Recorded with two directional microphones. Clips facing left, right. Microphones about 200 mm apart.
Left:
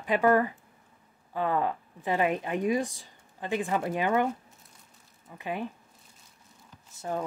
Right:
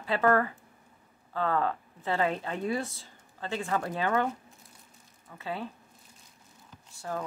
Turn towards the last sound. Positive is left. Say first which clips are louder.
# left 3 dB
turn(degrees=20)  # may be behind; listen again after turning